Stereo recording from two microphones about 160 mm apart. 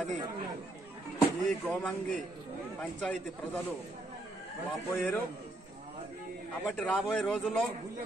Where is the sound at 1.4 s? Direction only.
5° left (ahead or behind).